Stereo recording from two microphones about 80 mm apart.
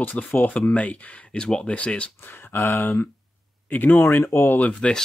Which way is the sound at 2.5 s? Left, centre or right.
Left.